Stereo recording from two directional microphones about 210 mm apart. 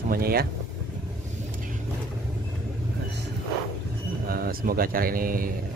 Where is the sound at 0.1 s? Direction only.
45° right (ahead or behind).